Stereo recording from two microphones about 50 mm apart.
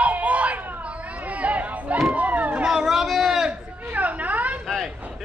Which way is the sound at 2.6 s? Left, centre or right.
Centre.